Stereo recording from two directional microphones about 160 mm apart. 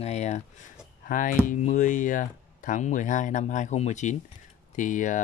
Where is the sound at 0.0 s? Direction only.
45° left (ahead or behind).